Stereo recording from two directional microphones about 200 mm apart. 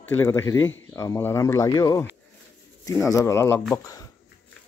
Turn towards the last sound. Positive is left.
turn(degrees=15)  # may be behind; listen again after turning